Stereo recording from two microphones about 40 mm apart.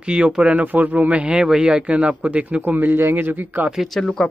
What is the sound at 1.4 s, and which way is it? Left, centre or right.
Speech, centre.